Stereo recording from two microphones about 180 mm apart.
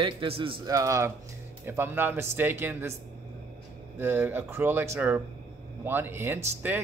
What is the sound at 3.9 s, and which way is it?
Speech, 10° right (ahead or behind).